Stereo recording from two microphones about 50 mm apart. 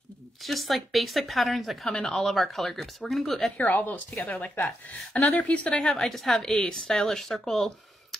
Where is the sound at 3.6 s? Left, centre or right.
Left.